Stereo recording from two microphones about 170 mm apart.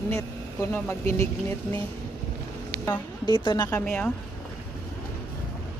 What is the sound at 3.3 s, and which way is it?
Speech, 30° left (ahead or behind).